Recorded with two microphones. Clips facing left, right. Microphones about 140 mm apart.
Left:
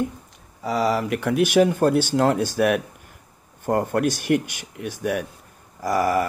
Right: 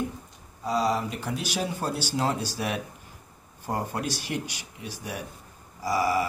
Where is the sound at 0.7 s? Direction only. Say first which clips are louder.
Left 4 dB; 70° left (ahead or behind).